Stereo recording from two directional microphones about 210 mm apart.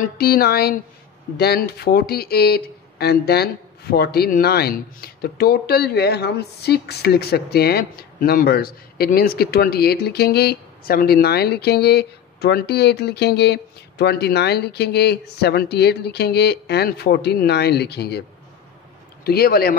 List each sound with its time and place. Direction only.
0.0 s speech: 45° left (ahead or behind)
19.2 s speech: 45° left (ahead or behind)